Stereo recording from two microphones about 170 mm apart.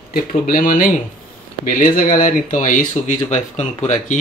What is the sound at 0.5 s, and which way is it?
Speech, 55° left (ahead or behind).